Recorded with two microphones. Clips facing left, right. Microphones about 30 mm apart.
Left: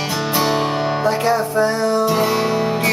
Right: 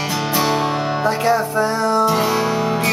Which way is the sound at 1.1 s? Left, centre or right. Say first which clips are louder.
Right 1 dB; centre.